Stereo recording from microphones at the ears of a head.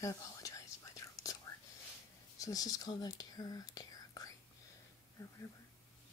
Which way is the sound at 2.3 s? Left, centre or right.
Left.